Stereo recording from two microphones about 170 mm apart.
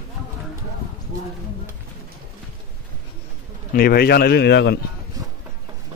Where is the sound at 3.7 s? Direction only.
65° left (ahead or behind); by 4.7 s 85° left.